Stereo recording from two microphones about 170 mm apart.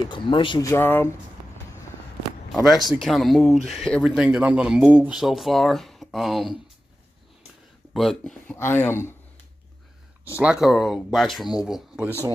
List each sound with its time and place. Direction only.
0.1 s speech: 30° left (ahead or behind)
0.6 s speech: 15° left (ahead or behind)
2.5 s speech: centre (ahead or behind)
7.9 s speech: centre (ahead or behind)
10.3 s speech: 5° right (ahead or behind)